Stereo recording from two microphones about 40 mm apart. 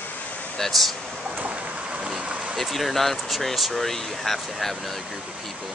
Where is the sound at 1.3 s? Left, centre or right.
Right.